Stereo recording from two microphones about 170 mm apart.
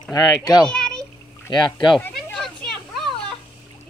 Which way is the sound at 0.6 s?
5° left (ahead or behind).